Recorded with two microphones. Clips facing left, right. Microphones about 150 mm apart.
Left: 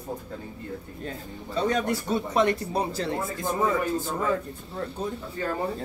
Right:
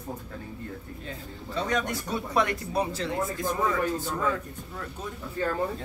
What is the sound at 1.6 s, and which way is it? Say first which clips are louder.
A man's voice: left 4 dB; 30° left (ahead or behind).